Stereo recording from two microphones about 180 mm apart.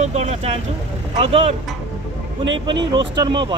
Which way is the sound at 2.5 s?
25° right (ahead or behind).